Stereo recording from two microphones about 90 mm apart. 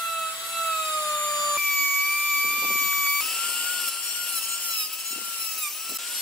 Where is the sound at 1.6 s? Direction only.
20° left (ahead or behind).